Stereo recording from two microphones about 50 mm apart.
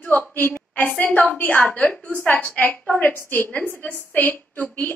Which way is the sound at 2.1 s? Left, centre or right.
Left.